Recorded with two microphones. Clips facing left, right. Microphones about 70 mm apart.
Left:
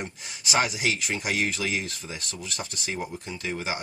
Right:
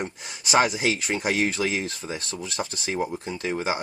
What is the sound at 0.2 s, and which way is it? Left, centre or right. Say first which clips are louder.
Speech: right 5 dB; right.